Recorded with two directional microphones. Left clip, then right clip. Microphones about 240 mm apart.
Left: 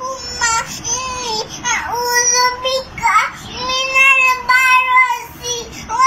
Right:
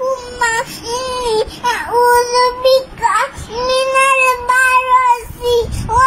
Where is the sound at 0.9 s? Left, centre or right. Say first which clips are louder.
Right 4 dB; centre.